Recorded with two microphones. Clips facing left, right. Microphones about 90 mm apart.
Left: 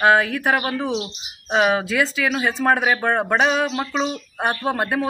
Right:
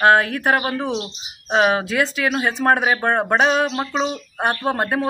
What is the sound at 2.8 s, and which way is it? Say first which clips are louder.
Speech: right 1 dB; 20° right (ahead or behind).